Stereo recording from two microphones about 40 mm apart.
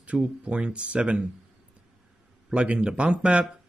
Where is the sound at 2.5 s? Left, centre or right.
Right.